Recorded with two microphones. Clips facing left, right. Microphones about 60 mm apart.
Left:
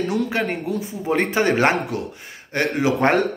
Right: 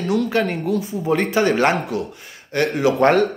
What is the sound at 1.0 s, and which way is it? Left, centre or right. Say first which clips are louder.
Speech: right 1 dB; left.